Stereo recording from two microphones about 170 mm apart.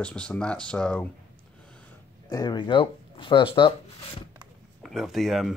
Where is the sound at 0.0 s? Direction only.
5° left (ahead or behind).